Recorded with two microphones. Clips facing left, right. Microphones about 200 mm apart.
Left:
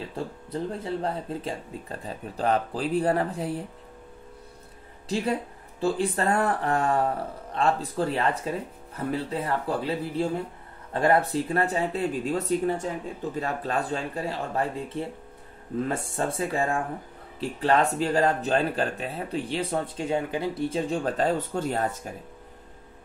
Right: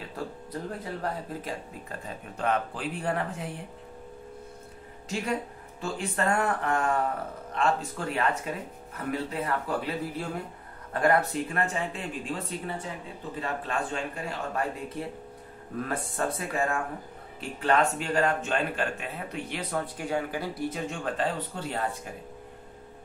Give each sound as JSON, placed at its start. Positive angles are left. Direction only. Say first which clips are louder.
{"t": 0.1, "sound": "speech", "louder": "left 3 dB", "side_deg": 25}
{"t": 5.0, "sound": "speech", "louder": "left 4 dB", "side_deg": 35}